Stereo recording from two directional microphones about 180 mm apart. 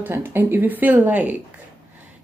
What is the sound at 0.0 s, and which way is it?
Speech, 10° right (ahead or behind).